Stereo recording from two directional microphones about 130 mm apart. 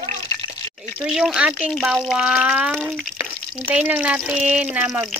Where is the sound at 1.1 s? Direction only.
5° right (ahead or behind).